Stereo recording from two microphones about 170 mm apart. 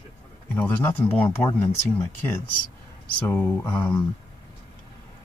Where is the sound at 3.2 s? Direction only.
10° left (ahead or behind).